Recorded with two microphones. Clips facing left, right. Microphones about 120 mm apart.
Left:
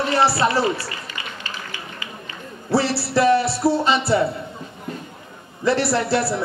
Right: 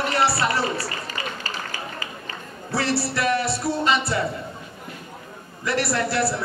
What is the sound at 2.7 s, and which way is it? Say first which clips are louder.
Music: left 5 dB; 30° left (ahead or behind).